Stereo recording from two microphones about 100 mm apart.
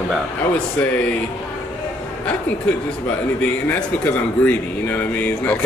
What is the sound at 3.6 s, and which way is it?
Speech, 15° left (ahead or behind).